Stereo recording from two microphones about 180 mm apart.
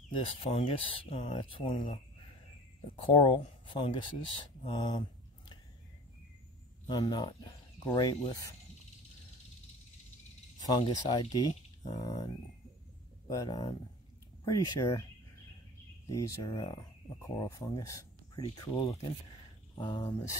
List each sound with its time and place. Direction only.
0.1 s speech: 30° left (ahead or behind)
3.1 s speech: 30° left (ahead or behind)
6.9 s speech: 25° left (ahead or behind)
10.7 s speech: 25° left (ahead or behind)
13.3 s speech: 20° left (ahead or behind)
16.1 s speech: 20° left (ahead or behind)